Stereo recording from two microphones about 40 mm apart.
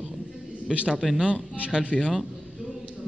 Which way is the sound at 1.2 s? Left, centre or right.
Right.